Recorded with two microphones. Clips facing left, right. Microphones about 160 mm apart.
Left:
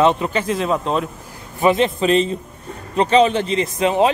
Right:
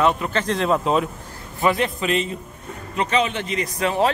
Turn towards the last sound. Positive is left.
turn(degrees=20)  # may be behind; listen again after turning